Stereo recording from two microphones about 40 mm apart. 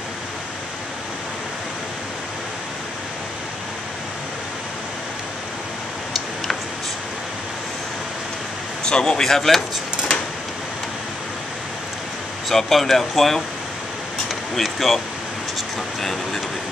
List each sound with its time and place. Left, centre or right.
8.8 s speech: centre
9.2 s speech: centre
12.4 s speech: centre
14.5 s speech: centre
16.0 s vehicle: centre